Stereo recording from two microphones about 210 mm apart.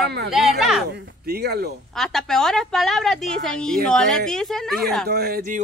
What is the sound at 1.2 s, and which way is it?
Speech, 50° right (ahead or behind).